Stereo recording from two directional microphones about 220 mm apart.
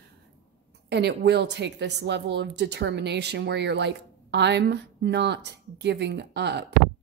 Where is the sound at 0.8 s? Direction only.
50° right (ahead or behind).